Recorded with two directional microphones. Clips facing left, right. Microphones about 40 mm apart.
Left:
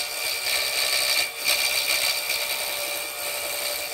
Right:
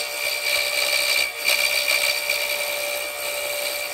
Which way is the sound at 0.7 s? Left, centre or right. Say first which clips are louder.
Right 3 dB; right.